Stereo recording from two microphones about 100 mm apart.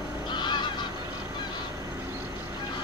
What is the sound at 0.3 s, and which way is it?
Goose, 50° left (ahead or behind).